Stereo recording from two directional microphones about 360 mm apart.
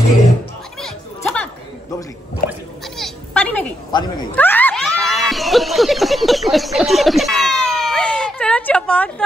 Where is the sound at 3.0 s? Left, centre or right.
Centre.